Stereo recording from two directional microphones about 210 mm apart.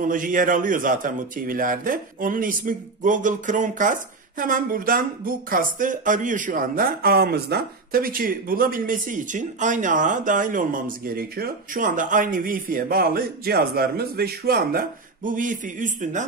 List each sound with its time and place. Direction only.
0.0 s a man's voice: 40° right (ahead or behind)